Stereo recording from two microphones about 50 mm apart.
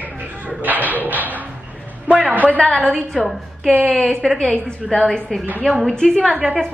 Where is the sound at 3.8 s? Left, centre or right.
Centre.